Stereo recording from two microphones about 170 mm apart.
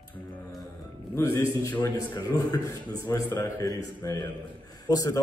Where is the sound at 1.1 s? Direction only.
15° left (ahead or behind).